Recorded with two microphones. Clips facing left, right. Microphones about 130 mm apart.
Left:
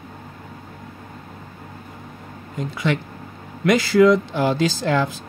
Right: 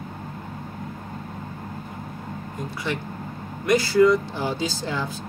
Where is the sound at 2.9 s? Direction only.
90° left.